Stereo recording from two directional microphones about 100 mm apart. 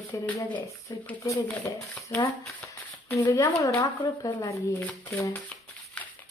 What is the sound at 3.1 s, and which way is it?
Speech, 35° left (ahead or behind).